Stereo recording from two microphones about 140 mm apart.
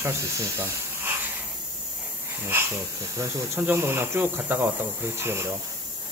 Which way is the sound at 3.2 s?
15° right (ahead or behind).